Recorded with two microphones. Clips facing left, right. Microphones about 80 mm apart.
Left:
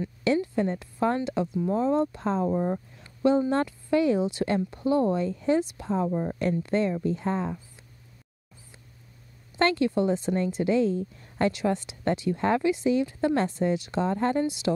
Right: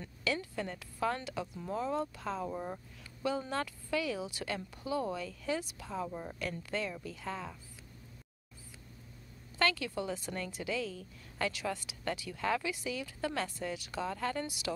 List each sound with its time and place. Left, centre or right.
0.2 s a woman's voice: left
9.6 s a woman's voice: left